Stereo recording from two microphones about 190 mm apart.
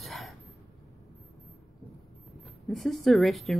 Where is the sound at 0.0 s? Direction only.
Centre (ahead or behind).